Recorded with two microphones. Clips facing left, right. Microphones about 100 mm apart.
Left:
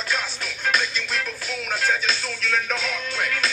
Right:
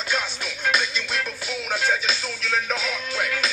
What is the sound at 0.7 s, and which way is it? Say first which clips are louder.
Music: even; 10° right (ahead or behind).